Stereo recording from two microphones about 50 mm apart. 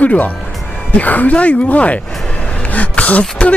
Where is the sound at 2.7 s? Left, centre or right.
Left.